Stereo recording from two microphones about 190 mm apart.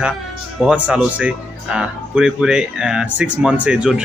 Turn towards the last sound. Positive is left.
turn(degrees=-5)  # may be behind; listen again after turning